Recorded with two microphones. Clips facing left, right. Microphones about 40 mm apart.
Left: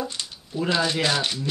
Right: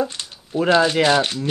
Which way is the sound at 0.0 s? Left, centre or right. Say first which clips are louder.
Right 6 dB; right.